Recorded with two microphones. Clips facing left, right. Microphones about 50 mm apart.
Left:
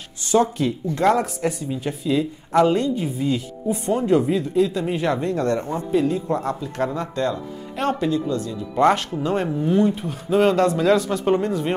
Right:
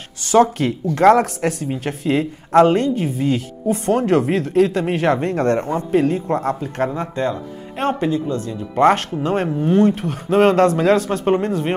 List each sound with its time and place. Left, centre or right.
0.2 s speech: right
1.0 s a woman's voice: right
7.0 s speech: right
9.7 s a woman's voice: right